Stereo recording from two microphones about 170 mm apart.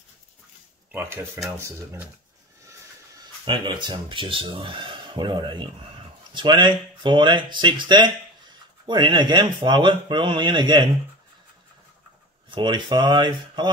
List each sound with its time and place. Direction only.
0.9 s speech: 15° right (ahead or behind)
2.6 s vehicle: 20° right (ahead or behind)
3.4 s speech: 30° right (ahead or behind)
12.4 s speech: 25° right (ahead or behind)